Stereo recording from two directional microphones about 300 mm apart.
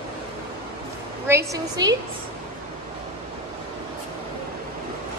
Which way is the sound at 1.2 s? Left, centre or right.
Centre.